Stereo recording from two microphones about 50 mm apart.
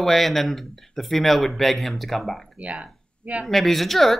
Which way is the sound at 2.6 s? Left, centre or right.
Right.